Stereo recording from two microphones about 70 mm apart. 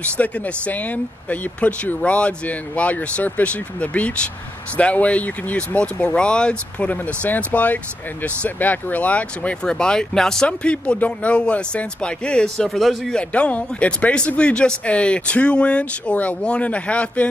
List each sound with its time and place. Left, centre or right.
0.0 s speech: left; by 13.2 s centre
13.3 s speech: centre